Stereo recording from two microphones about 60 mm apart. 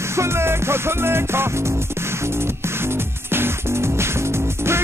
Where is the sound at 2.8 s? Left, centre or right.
Right.